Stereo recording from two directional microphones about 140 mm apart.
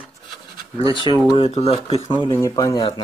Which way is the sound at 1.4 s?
45° left (ahead or behind).